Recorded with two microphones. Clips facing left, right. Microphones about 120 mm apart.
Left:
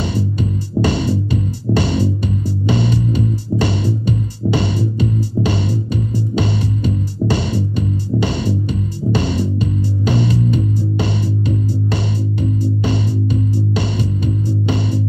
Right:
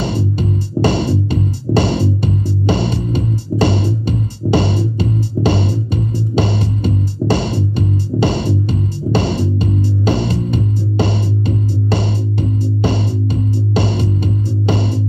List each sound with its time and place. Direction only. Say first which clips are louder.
0.0 s music: right 1 dB; 30° right (ahead or behind)